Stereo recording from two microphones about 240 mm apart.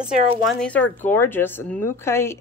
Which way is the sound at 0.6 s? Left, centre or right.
Centre.